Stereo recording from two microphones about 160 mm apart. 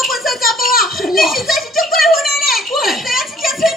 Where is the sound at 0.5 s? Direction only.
65° left (ahead or behind).